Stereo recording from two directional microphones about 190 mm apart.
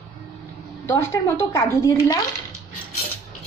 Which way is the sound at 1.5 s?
15° left (ahead or behind).